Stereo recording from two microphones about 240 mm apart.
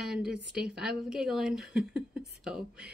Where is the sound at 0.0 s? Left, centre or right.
Centre.